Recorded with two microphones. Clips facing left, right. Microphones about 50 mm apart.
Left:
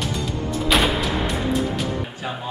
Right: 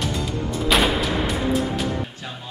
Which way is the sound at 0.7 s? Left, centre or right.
Centre.